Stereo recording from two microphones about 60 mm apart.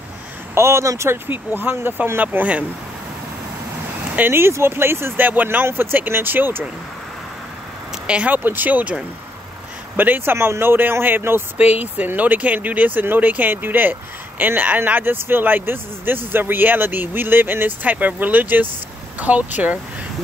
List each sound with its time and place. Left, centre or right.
0.6 s speech: right
4.3 s speech: right
8.1 s speech: right